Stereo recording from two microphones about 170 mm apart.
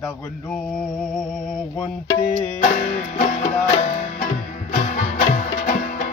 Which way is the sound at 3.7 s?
40° left (ahead or behind).